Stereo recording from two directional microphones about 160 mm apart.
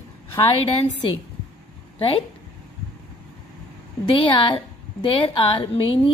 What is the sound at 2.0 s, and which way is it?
Speech, 35° left (ahead or behind).